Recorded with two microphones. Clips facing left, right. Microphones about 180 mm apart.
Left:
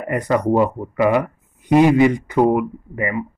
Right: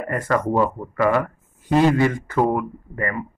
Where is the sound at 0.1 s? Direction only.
15° left (ahead or behind).